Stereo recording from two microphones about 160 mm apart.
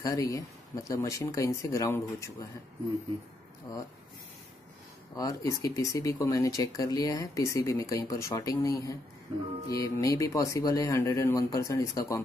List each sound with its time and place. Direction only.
0.0 s speech: 20° left (ahead or behind)
3.7 s speech: 20° left (ahead or behind)
5.1 s speech: 20° left (ahead or behind)
9.3 s speech: 30° right (ahead or behind)
9.8 s speech: 20° left (ahead or behind)